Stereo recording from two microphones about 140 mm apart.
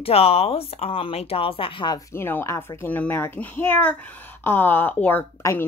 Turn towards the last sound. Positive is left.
turn(degrees=20)  # may be behind; listen again after turning